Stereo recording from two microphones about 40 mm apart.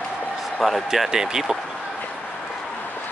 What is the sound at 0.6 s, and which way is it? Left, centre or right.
Speech, centre.